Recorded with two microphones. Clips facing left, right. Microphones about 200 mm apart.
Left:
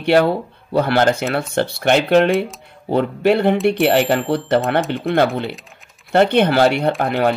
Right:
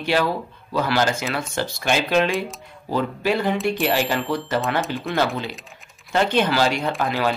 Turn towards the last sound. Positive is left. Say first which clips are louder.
# left 5 dB
turn(degrees=55)  # may be behind; listen again after turning